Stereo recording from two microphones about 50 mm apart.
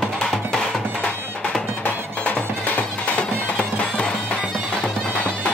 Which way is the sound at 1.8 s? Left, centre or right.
Left.